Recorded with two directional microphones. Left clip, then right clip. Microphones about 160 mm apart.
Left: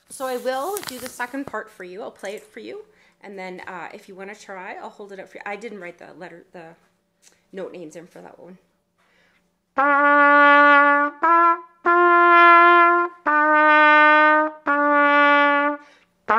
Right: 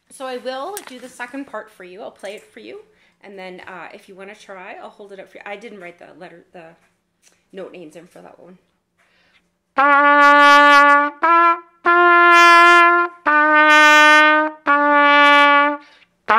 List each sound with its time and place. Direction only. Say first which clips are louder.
0.1 s speech: left 2 dB; 30° left (ahead or behind)
9.8 s trumpet: right 4 dB; centre (ahead or behind)